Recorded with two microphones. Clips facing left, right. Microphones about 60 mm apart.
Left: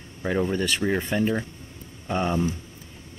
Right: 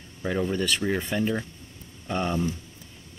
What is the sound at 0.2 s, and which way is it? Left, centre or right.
Speech, centre.